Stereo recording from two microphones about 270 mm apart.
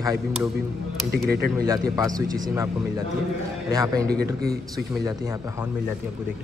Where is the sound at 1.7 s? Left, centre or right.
Centre.